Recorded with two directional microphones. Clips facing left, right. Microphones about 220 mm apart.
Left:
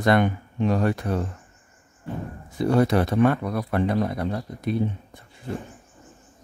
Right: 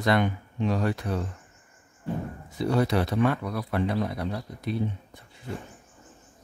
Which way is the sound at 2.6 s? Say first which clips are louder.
Left 4 dB; 50° left (ahead or behind).